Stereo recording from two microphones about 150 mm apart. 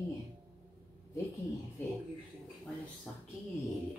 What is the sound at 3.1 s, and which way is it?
Speech, 5° left (ahead or behind).